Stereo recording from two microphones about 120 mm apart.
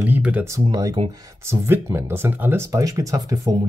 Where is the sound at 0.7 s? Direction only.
35° right (ahead or behind).